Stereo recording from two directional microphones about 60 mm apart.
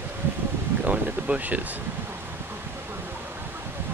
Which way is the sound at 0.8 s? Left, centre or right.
Right.